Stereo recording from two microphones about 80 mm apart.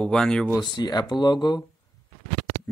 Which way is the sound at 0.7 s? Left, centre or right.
Left.